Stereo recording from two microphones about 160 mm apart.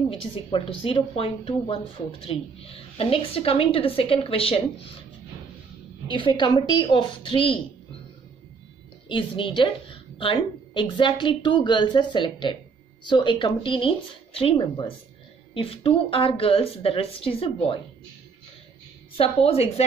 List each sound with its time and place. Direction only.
0.1 s a woman's voice: 35° left (ahead or behind)
6.0 s a woman's voice: 30° left (ahead or behind)
9.1 s a woman's voice: 30° left (ahead or behind)
19.1 s a woman's voice: 35° left (ahead or behind)